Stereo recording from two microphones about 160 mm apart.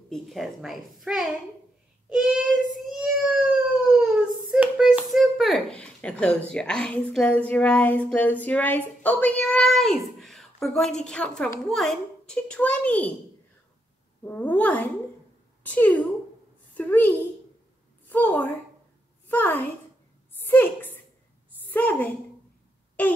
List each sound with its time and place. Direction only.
0.1 s a child's voice: centre (ahead or behind)
2.0 s child singing: 5° right (ahead or behind)
2.9 s speech: 5° right (ahead or behind)
14.2 s speech: 10° left (ahead or behind)
16.7 s a sound: 10° left (ahead or behind)